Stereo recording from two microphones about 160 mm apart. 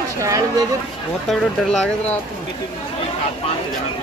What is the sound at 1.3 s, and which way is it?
Speech, centre (ahead or behind).